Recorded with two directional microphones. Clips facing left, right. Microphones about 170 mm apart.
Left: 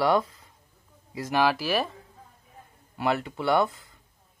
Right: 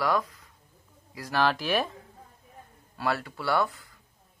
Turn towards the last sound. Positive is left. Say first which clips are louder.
# left 3 dB
turn(degrees=25)  # may be behind; listen again after turning